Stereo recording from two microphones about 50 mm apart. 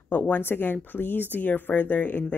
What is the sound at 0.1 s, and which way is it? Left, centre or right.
Speech, left.